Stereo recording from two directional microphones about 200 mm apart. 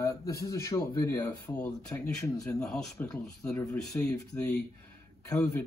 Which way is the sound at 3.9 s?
15° left (ahead or behind).